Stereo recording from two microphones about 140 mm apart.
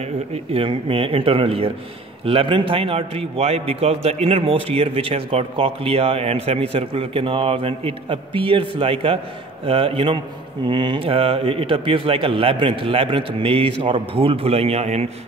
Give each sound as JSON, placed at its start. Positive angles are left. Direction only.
{"t": 0.0, "sound": "a man's voice", "side_deg": -45}